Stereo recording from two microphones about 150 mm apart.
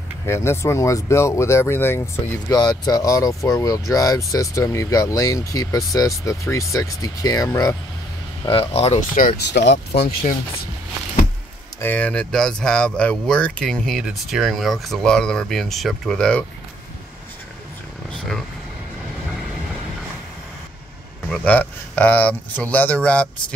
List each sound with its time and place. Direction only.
0.3 s speech: 15° left (ahead or behind)
8.5 s speech: 40° left (ahead or behind)
9.6 s speech: 90° left
11.8 s speech: 10° left (ahead or behind)
18.1 s vehicle: 5° left (ahead or behind)
21.3 s speech: 10° left (ahead or behind)